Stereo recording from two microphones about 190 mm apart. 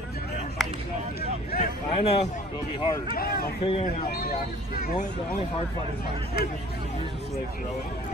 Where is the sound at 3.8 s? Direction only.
55° left (ahead or behind).